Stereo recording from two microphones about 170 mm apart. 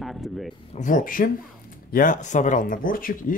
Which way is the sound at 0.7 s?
50° left (ahead or behind).